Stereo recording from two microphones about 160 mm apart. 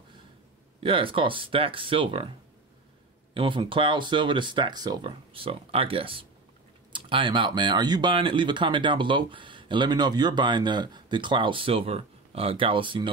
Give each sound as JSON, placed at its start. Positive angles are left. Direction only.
{"t": 0.8, "sound": "speech", "side_deg": -35}
{"t": 3.3, "sound": "speech", "side_deg": -30}